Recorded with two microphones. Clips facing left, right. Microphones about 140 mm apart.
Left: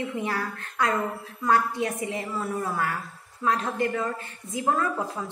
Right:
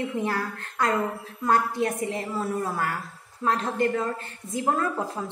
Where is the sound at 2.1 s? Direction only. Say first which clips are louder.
Right 2 dB; 35° right (ahead or behind).